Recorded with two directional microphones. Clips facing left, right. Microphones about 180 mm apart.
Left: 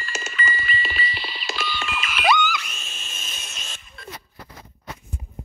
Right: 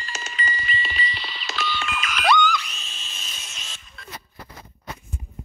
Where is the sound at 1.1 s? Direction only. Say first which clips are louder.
Left 2 dB; 5° left (ahead or behind).